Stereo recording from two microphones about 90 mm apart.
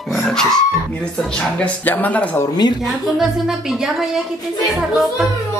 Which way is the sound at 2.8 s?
5° right (ahead or behind).